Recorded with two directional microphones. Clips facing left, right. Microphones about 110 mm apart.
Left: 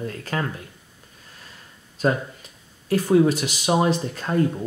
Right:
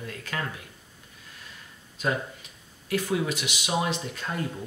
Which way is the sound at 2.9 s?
40° left (ahead or behind).